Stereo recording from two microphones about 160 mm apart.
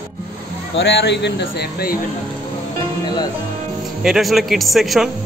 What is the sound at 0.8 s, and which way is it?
A man's voice, 90° left.